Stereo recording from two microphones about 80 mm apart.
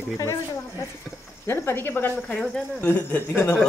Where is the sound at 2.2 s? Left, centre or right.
Centre.